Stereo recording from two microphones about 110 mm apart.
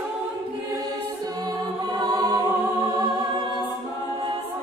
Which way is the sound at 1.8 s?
40° right (ahead or behind).